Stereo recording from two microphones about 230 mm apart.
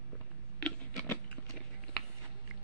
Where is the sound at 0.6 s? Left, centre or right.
Centre.